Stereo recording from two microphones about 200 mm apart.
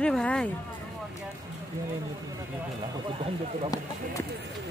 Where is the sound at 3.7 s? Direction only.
20° left (ahead or behind).